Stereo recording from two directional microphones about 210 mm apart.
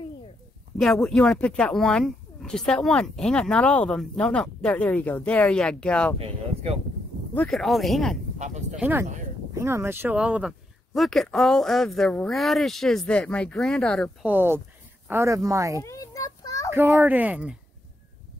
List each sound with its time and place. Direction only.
0.7 s speech: centre (ahead or behind)
6.1 s speech: 30° right (ahead or behind)
7.3 s speech: centre (ahead or behind)
8.4 s a sound: 35° right (ahead or behind)
8.7 s speech: 10° right (ahead or behind)
14.2 s speech: 10° right (ahead or behind)
15.8 s a sound: 15° left (ahead or behind)
16.7 s speech: 10° right (ahead or behind)